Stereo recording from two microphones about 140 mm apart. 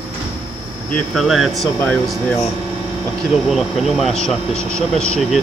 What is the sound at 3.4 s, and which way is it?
Speech, centre (ahead or behind).